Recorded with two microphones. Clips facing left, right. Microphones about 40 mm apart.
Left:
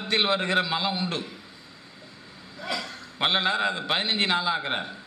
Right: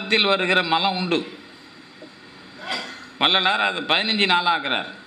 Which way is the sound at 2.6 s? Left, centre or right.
Right.